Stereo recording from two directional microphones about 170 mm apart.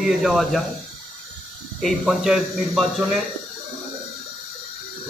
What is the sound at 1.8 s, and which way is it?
Speech, centre (ahead or behind).